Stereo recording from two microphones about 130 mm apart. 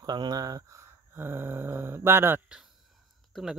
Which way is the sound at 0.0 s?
30° right (ahead or behind).